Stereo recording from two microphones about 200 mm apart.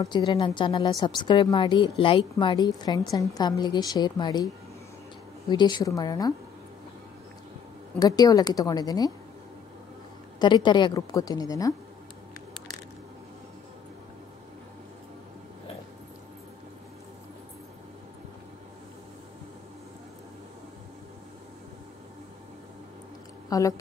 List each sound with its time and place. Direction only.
0.0 s speech: 20° left (ahead or behind)
5.5 s speech: 20° left (ahead or behind)
8.0 s speech: 20° left (ahead or behind)
10.4 s speech: 20° left (ahead or behind)
23.5 s a woman's voice: 20° left (ahead or behind)